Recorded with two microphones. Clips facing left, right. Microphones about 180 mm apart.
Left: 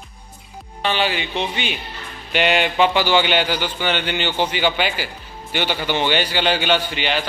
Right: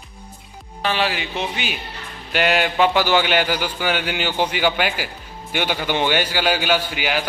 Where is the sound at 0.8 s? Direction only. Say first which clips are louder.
Left 1 dB; centre (ahead or behind).